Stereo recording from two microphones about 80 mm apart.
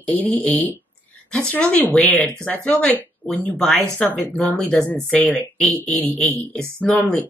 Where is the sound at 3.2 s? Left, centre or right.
Centre.